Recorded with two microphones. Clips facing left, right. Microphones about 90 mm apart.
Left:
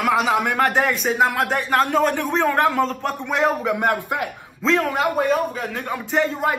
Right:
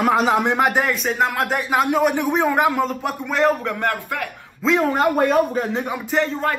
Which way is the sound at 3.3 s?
Centre (ahead or behind).